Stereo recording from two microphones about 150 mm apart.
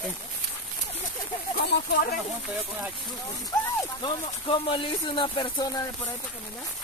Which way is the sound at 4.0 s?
35° left (ahead or behind).